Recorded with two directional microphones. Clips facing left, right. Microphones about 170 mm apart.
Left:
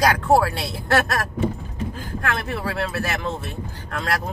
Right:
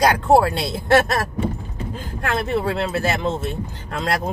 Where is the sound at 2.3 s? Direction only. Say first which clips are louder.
Right 6 dB; 25° right (ahead or behind).